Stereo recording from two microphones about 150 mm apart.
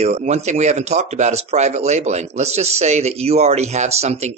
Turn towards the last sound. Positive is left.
turn(degrees=-45)  # may be behind; listen again after turning